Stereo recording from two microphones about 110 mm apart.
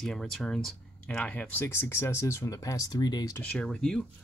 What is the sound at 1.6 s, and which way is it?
Speech, 20° left (ahead or behind).